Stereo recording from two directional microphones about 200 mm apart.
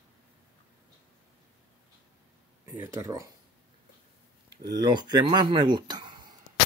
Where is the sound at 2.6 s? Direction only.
10° right (ahead or behind).